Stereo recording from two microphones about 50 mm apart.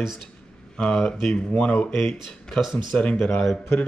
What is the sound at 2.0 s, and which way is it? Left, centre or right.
Speech, centre.